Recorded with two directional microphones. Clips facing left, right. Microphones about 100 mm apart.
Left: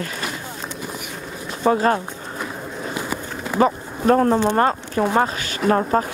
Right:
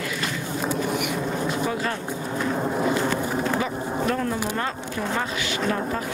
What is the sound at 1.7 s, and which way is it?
Speech, 45° left (ahead or behind).